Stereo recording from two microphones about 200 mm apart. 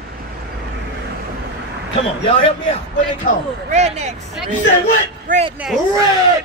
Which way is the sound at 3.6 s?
35° right (ahead or behind).